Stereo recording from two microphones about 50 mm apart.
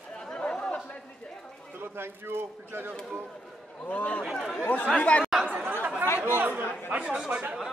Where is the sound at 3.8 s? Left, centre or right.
Left.